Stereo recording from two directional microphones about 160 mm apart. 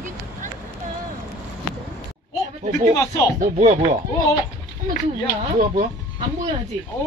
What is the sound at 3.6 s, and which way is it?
Speech, 45° right (ahead or behind).